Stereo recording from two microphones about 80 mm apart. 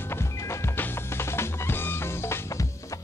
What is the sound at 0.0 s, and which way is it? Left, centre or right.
Music, left.